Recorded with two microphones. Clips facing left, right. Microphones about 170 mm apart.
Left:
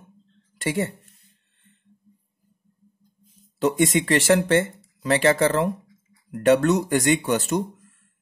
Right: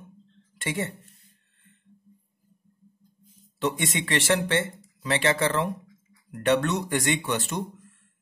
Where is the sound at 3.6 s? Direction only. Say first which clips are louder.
Left 7 dB; 40° left (ahead or behind).